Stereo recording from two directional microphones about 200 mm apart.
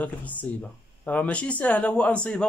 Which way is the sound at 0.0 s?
10° left (ahead or behind).